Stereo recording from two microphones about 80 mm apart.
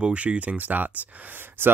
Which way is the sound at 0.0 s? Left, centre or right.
Centre.